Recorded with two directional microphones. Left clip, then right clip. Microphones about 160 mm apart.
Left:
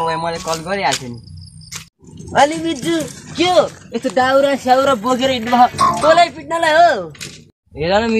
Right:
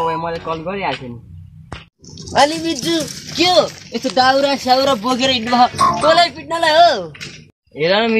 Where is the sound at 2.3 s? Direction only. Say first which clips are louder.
Even; 15° right (ahead or behind).